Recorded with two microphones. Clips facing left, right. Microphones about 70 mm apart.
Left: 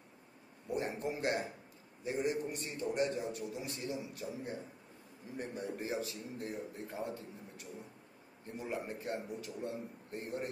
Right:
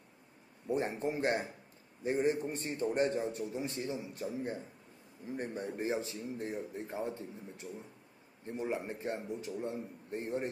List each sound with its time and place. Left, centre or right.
0.7 s a man's voice: right